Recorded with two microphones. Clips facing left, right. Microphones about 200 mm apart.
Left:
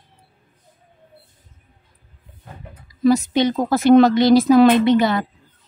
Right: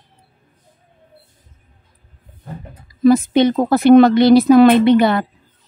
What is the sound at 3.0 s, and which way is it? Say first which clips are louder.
Speech: right 4 dB; 55° right (ahead or behind).